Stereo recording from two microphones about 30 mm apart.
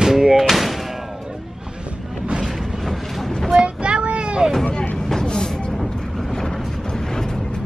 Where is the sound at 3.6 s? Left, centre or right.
Right.